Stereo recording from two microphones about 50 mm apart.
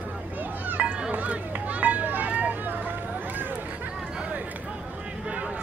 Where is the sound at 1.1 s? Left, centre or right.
Right.